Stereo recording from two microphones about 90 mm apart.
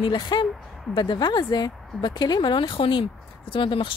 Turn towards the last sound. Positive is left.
turn(degrees=70)  # may be behind; listen again after turning